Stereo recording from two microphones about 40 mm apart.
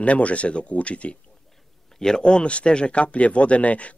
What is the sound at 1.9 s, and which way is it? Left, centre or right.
Speech, centre.